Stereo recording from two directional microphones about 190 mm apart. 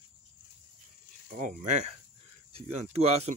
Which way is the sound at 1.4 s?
40° right (ahead or behind).